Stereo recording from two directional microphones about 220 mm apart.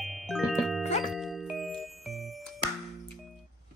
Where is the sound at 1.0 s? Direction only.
Centre (ahead or behind).